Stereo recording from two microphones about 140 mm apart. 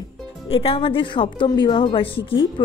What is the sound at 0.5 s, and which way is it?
A woman's voice, 40° left (ahead or behind).